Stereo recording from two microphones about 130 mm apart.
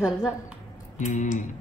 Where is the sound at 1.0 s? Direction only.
80° left.